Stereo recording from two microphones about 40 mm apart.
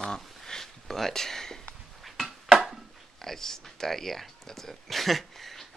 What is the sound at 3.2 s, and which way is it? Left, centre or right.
Speech, centre.